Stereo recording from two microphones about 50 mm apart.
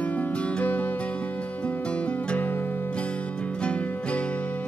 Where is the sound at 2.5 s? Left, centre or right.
Left.